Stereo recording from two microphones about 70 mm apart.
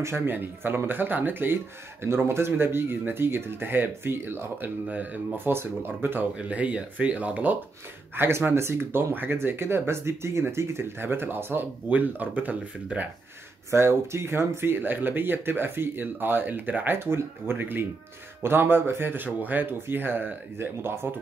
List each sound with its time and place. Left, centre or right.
0.0 s speech: right
4.8 s speech: right
8.2 s speech: right
13.7 s speech: right